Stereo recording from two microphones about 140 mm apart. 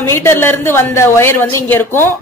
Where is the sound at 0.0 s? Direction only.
20° left (ahead or behind).